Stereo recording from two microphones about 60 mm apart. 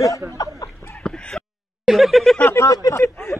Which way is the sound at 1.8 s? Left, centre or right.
Centre.